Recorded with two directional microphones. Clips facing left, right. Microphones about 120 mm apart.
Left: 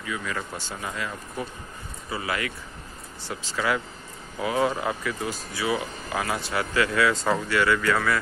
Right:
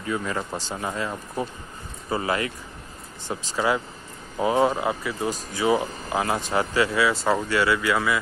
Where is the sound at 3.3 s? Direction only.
15° right (ahead or behind).